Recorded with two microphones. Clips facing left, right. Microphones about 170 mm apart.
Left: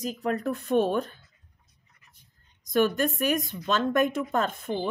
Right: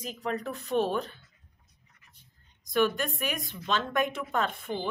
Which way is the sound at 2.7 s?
45° left (ahead or behind).